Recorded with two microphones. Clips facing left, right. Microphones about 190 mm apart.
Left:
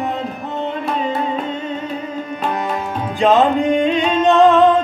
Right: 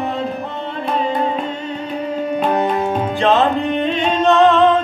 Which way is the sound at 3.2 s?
15° left (ahead or behind).